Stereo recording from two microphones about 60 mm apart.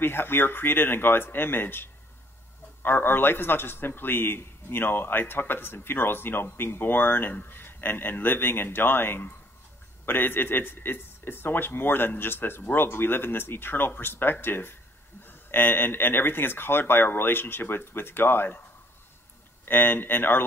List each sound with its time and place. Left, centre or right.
0.0 s a man's voice: left
19.6 s a man's voice: left